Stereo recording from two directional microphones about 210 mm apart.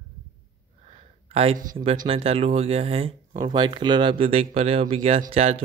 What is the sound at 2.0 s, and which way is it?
Speech, 25° right (ahead or behind).